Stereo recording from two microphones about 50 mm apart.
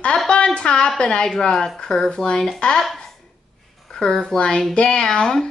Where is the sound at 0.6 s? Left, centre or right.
Left.